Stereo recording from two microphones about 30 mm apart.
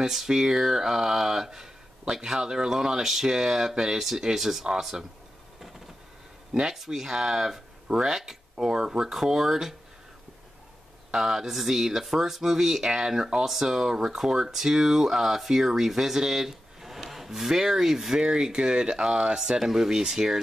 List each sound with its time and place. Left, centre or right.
0.0 s speech: centre
6.6 s speech: centre
11.1 s speech: centre
19.6 s speech: centre